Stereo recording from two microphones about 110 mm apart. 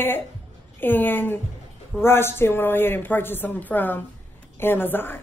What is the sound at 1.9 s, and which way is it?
A woman's voice, 20° left (ahead or behind).